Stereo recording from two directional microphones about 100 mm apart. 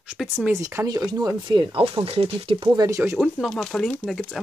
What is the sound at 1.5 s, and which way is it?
Speech, 55° right (ahead or behind).